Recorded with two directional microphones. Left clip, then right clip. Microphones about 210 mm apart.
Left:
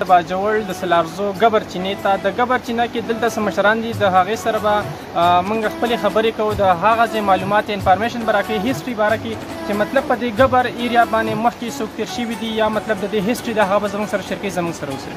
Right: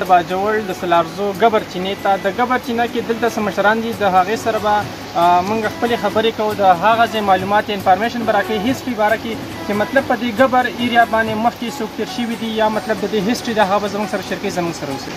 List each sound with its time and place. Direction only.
0.0 s speech: 20° left (ahead or behind)
13.6 s speech: 20° left (ahead or behind)